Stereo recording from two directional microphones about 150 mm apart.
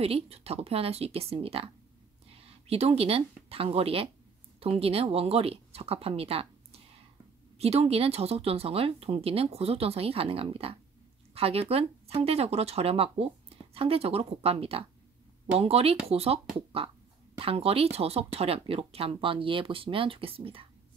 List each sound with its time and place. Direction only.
0.0 s speech: 40° right (ahead or behind)